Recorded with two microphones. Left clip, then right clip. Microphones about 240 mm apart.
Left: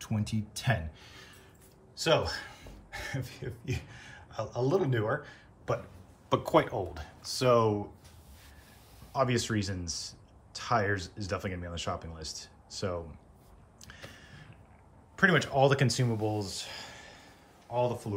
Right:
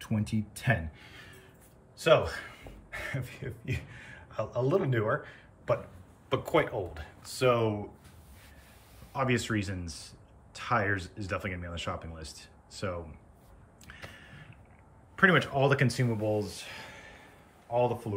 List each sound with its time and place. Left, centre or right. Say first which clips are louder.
0.0 s speech: right 2 dB; centre
6.2 s speech: left 2 dB; left
9.1 s speech: left 1 dB; centre
13.8 s a sound: right 2 dB; centre
15.1 s speech: right 1 dB; centre